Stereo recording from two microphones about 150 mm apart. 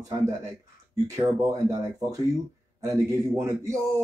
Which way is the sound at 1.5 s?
20° right (ahead or behind).